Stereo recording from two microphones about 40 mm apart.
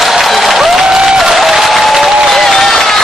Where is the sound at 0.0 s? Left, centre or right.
Centre.